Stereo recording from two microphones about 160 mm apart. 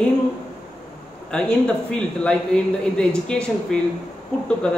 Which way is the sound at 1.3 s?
5° left (ahead or behind).